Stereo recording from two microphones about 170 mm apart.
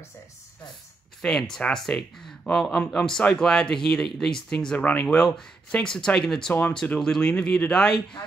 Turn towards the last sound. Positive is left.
turn(degrees=5)  # may be behind; listen again after turning